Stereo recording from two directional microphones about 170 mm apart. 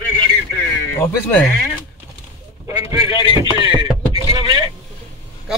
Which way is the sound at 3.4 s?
30° right (ahead or behind).